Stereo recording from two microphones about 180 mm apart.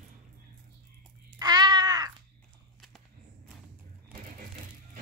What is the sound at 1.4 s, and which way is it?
Crow, 20° right (ahead or behind).